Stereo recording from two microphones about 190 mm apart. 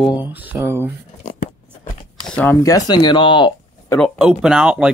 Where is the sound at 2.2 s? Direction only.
5° left (ahead or behind); by 3.5 s 25° left (ahead or behind).